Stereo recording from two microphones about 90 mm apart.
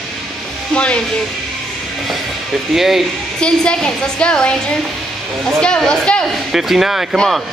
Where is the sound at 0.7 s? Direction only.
10° left (ahead or behind).